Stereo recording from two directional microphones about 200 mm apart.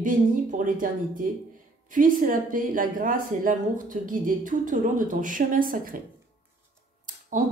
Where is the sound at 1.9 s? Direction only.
45° right (ahead or behind).